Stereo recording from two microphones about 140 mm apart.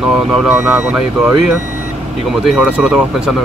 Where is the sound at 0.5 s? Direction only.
15° right (ahead or behind).